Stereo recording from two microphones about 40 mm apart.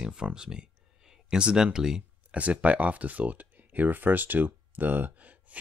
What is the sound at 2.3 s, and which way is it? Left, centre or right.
Speech, right.